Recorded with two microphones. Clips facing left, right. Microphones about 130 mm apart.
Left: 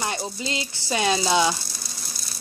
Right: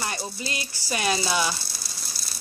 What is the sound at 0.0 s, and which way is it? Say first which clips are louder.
Speech: left 3 dB; 20° left (ahead or behind).